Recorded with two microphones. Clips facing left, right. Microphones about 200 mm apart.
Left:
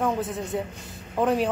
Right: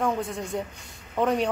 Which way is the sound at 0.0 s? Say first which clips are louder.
Left 1 dB; 5° left (ahead or behind).